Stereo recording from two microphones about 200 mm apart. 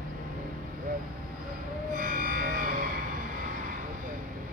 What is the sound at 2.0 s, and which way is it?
Music, 45° right (ahead or behind).